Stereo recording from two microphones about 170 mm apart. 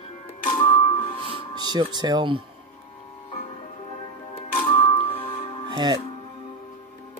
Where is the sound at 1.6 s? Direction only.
25° right (ahead or behind).